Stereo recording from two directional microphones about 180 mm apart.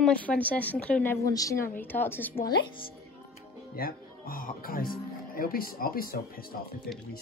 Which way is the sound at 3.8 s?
55° left (ahead or behind).